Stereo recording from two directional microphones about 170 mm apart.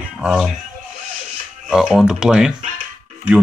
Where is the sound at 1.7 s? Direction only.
Centre (ahead or behind).